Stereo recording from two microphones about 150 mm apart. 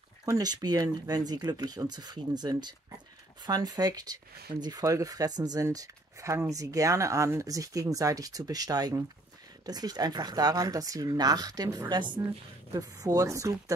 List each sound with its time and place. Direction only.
0.2 s speech: 25° right (ahead or behind)